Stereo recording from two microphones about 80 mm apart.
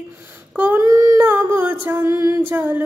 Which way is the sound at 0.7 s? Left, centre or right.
Right.